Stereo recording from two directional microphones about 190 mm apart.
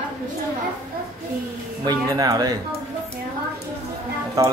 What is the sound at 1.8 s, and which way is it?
Speech, 20° right (ahead or behind).